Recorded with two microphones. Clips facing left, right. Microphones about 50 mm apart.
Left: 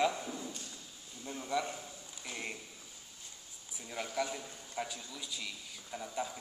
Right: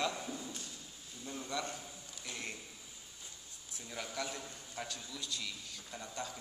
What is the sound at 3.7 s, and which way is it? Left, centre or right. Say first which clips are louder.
A man's voice: left 3 dB; centre.